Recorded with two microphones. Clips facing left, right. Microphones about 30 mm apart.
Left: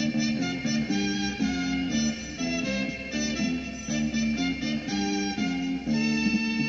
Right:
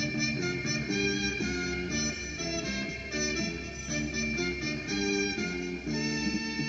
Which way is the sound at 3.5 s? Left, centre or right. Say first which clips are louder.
Left 5 dB; left.